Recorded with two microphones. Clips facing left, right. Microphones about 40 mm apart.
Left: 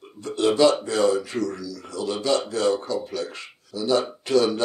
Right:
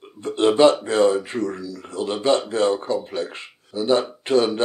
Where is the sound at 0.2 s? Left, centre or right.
Right.